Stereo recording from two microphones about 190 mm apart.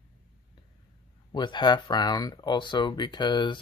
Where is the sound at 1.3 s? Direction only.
25° left (ahead or behind).